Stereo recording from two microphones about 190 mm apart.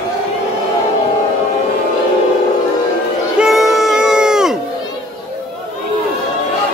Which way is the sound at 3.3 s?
Centre (ahead or behind).